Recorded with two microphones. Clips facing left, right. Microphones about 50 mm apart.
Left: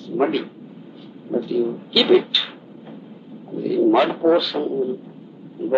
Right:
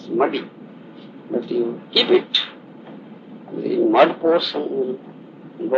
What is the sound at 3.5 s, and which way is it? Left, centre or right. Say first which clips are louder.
Speech: right 1 dB; right.